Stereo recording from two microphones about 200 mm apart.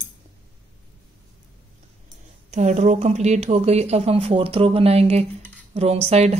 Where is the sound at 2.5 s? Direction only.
35° right (ahead or behind).